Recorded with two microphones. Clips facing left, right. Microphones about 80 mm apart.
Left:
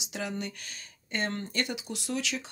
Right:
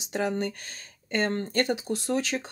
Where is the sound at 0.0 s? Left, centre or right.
Right.